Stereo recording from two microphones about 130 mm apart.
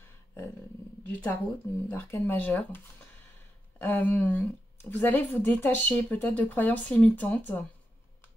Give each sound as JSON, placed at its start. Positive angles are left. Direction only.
{"t": 1.2, "sound": "speech", "side_deg": 15}